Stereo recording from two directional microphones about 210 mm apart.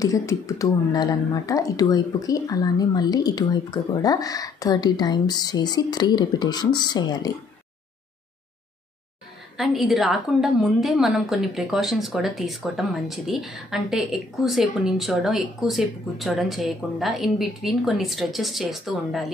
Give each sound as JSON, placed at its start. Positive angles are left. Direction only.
{"t": 0.0, "sound": "speech", "side_deg": 15}
{"t": 9.6, "sound": "a woman's voice", "side_deg": 0}